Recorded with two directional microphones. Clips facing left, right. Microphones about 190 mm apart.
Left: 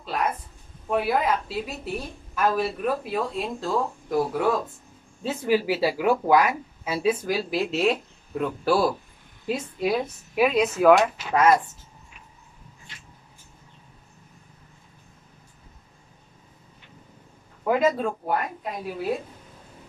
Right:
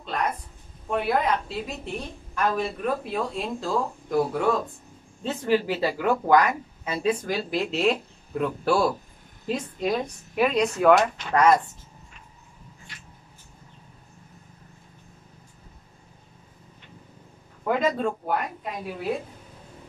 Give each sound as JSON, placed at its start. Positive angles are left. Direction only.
{"t": 0.0, "sound": "a sound", "side_deg": 5}
{"t": 0.8, "sound": "a woman's voice", "side_deg": 5}
{"t": 17.6, "sound": "a woman's voice", "side_deg": 5}